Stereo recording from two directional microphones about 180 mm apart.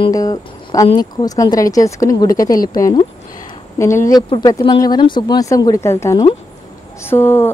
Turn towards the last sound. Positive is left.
turn(degrees=10)  # may be behind; listen again after turning